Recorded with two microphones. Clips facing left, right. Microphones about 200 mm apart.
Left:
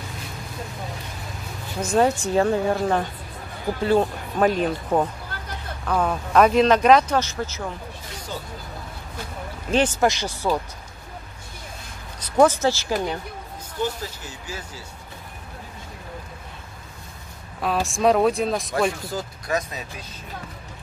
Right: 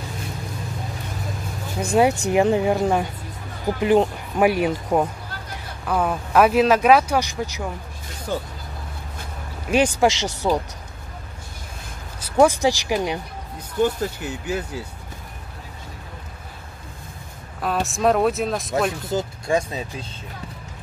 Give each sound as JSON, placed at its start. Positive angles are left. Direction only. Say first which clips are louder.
{"t": 1.8, "sound": "speech", "louder": "right 2 dB", "side_deg": -10}
{"t": 8.3, "sound": "speech", "louder": "right 8 dB", "side_deg": -50}
{"t": 9.7, "sound": "speech", "louder": "right 2 dB", "side_deg": -15}
{"t": 10.1, "sound": "speech", "louder": "right 3 dB", "side_deg": -75}
{"t": 12.2, "sound": "speech", "louder": "right 1 dB", "side_deg": -10}
{"t": 13.8, "sound": "speech", "louder": "right 6 dB", "side_deg": -60}
{"t": 17.6, "sound": "speech", "louder": "even", "side_deg": 0}
{"t": 19.0, "sound": "speech", "louder": "right 5 dB", "side_deg": -25}